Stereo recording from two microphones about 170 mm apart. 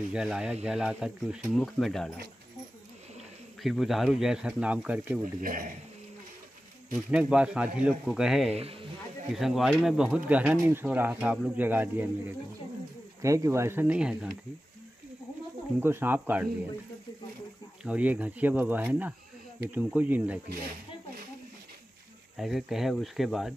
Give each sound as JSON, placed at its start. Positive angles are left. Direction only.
{"t": 0.1, "sound": "speech", "side_deg": -5}
{"t": 3.6, "sound": "speech", "side_deg": 0}
{"t": 5.4, "sound": "speech", "side_deg": -55}
{"t": 7.1, "sound": "speech", "side_deg": -5}
{"t": 8.5, "sound": "speech", "side_deg": -35}
{"t": 9.3, "sound": "speech", "side_deg": 0}
{"t": 15.8, "sound": "speech", "side_deg": -15}
{"t": 17.8, "sound": "speech", "side_deg": -10}
{"t": 22.4, "sound": "speech", "side_deg": 0}